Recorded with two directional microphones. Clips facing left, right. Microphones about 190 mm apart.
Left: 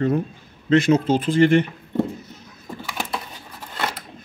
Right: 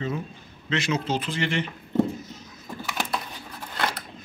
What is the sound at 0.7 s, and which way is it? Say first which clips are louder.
A man's voice: left 10 dB; 50° left (ahead or behind).